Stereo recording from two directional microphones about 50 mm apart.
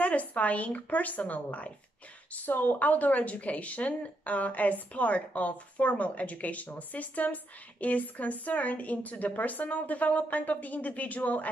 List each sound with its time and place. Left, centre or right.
0.0 s a woman's voice: left